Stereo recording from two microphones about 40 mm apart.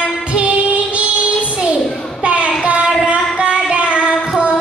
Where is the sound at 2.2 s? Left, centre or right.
Right.